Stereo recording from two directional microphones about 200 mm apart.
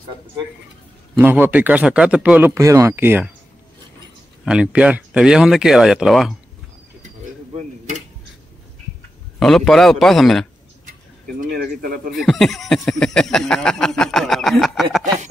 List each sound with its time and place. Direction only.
1.1 s a man's voice: 10° right (ahead or behind)
4.5 s speech: 5° right (ahead or behind)
9.4 s speech: centre (ahead or behind)
11.4 s speech: 45° right (ahead or behind)
12.2 s speech: centre (ahead or behind)